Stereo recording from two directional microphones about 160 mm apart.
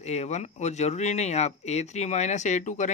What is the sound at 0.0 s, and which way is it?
Speech, 45° left (ahead or behind).